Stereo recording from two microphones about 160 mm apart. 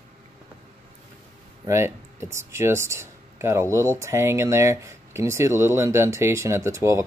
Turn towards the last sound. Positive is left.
turn(degrees=-20)  # may be behind; listen again after turning